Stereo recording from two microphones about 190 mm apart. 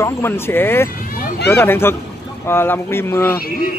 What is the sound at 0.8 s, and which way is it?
Vehicle, 45° left (ahead or behind).